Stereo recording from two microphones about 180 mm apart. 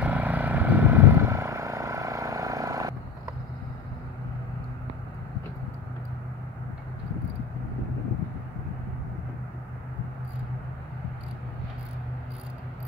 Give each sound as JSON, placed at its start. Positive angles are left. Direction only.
{"t": 0.0, "sound": "vehicle", "side_deg": -10}